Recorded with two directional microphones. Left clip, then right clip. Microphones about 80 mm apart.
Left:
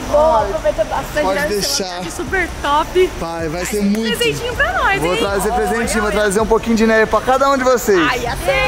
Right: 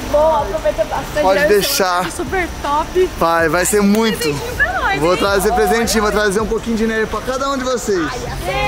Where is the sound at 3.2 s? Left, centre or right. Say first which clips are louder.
Right 8 dB; right.